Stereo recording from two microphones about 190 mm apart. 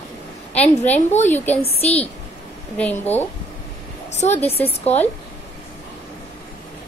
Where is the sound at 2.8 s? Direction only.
10° left (ahead or behind).